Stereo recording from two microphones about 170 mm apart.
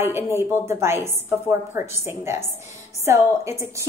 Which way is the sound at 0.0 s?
15° right (ahead or behind).